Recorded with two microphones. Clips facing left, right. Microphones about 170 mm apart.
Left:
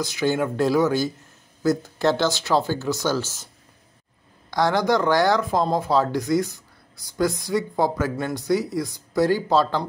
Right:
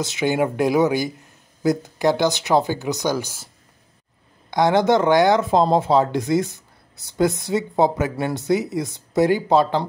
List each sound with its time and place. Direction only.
0.0 s speech: 20° right (ahead or behind)
4.5 s speech: 20° right (ahead or behind)